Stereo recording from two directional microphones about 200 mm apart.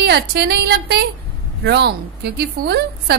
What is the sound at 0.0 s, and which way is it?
A woman's voice, 55° right (ahead or behind).